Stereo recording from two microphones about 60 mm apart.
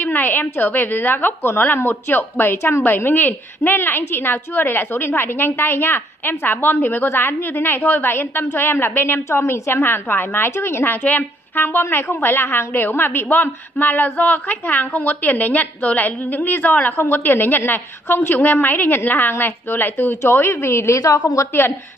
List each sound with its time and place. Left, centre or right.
0.0 s a woman's voice: left